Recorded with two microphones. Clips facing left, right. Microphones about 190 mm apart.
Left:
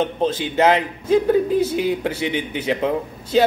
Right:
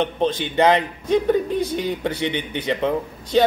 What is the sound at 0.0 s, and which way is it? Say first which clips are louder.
A man's voice: left 1 dB; 5° left (ahead or behind).